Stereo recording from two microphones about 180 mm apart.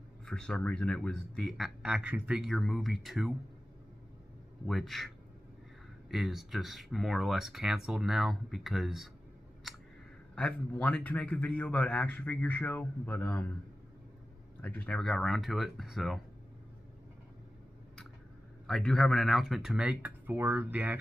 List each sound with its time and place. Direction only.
0.2 s speech: 5° left (ahead or behind)
4.6 s speech: centre (ahead or behind)
10.3 s a man's voice: 5° left (ahead or behind)
14.6 s speech: 10° left (ahead or behind)
18.7 s speech: centre (ahead or behind)